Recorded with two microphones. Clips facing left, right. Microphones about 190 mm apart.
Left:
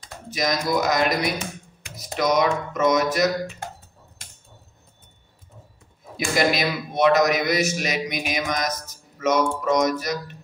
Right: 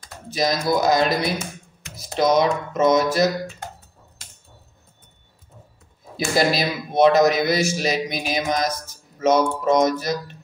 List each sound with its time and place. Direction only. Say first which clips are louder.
0.3 s speech: right 2 dB; 30° right (ahead or behind)
6.1 s speech: right 2 dB; 30° right (ahead or behind)